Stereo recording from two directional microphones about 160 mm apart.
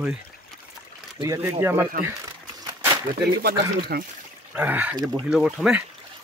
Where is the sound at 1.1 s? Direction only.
20° right (ahead or behind).